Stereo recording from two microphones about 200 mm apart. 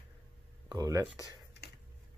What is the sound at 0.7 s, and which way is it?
Speech, 15° right (ahead or behind).